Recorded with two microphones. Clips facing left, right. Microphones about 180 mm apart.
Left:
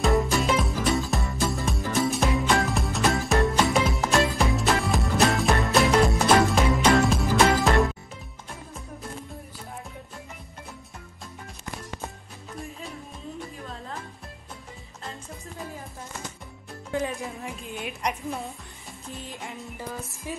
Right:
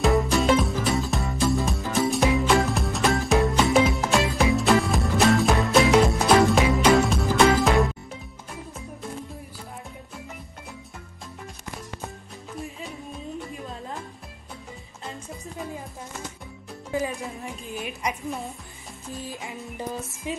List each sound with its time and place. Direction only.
0.0 s music: centre (ahead or behind)
16.9 s music: centre (ahead or behind)